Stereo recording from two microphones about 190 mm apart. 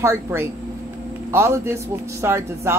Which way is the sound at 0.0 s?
15° right (ahead or behind).